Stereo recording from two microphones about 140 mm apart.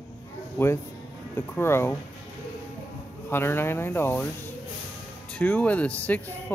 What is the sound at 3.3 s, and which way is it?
Speech, 15° left (ahead or behind).